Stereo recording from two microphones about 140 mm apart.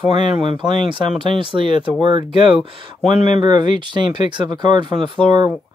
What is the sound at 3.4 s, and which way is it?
Speech, 35° right (ahead or behind).